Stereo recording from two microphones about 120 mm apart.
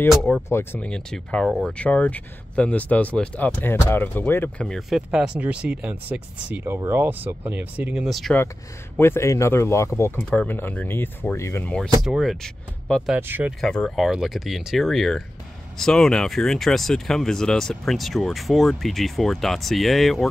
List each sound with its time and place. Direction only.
0.3 s speech: 20° left (ahead or behind)
4.6 s speech: centre (ahead or behind)
8.9 s speech: 20° left (ahead or behind)
12.0 s speech: centre (ahead or behind)
13.1 s speech: 10° right (ahead or behind)
13.6 s speech: 5° left (ahead or behind)